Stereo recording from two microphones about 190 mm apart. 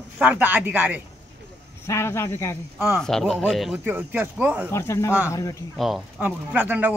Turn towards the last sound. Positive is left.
turn(degrees=-10)  # may be behind; listen again after turning